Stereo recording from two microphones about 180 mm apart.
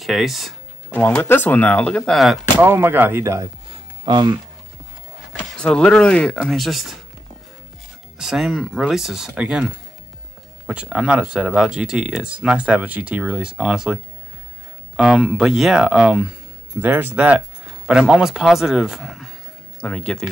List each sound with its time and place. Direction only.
0.0 s speech: centre (ahead or behind)
2.6 s speech: 10° right (ahead or behind)
5.6 s speech: 5° left (ahead or behind)
8.2 s speech: centre (ahead or behind)
15.0 s speech: 5° right (ahead or behind)